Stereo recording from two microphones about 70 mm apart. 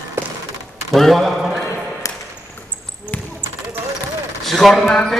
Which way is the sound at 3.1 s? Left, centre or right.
Right.